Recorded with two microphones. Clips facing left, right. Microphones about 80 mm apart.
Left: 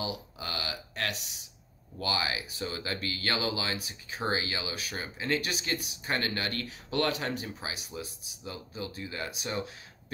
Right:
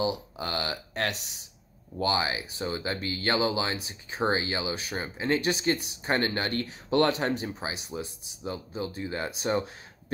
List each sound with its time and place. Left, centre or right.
0.0 s speech: right